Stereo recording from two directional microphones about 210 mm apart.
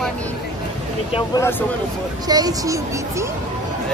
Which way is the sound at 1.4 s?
10° left (ahead or behind).